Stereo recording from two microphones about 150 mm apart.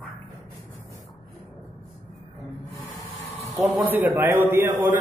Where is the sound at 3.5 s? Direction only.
20° right (ahead or behind).